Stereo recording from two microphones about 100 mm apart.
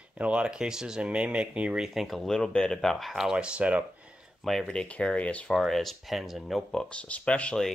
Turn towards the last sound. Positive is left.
turn(degrees=10)  # may be behind; listen again after turning